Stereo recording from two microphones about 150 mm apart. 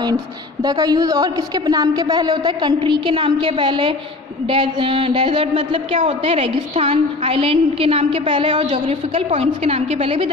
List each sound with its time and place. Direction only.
0.7 s a woman's voice: 25° right (ahead or behind)
8.8 s a woman's voice: 45° right (ahead or behind)